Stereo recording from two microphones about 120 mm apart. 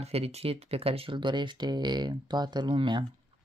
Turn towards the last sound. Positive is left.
turn(degrees=-40)  # may be behind; listen again after turning